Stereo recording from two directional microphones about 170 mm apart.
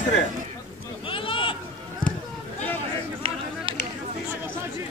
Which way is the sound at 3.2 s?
35° right (ahead or behind).